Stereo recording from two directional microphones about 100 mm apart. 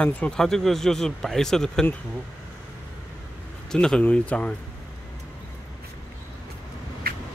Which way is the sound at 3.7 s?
10° left (ahead or behind).